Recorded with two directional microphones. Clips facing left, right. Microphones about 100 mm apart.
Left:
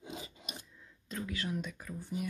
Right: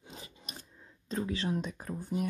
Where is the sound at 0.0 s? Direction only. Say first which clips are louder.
Left 5 dB; 10° left (ahead or behind).